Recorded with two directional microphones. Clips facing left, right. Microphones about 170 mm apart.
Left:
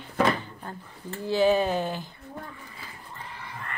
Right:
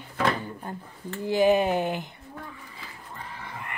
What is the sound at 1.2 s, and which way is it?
Speech, 15° right (ahead or behind).